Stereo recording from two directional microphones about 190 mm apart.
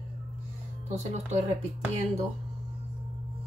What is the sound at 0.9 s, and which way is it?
Speech, 35° right (ahead or behind).